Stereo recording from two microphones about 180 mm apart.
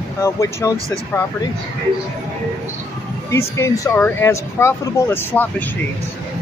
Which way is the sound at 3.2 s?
15° left (ahead or behind).